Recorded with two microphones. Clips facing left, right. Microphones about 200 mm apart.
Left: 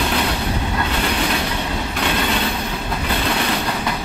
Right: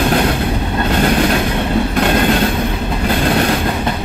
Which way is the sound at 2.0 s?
50° right (ahead or behind).